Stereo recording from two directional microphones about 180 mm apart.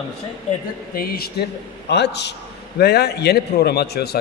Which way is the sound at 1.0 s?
60° left (ahead or behind).